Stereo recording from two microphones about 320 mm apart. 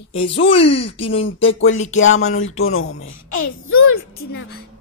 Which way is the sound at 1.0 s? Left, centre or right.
Centre.